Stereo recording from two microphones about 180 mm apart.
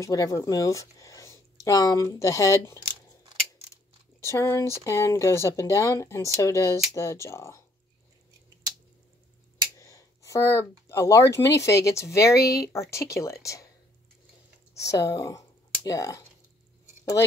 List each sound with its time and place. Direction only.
0.0 s speech: 20° left (ahead or behind)
3.7 s crumpling: 15° left (ahead or behind)
4.8 s speech: 15° left (ahead or behind)
9.8 s a sound: 15° left (ahead or behind)
11.3 s speech: 15° left (ahead or behind)
14.9 s speech: 20° left (ahead or behind)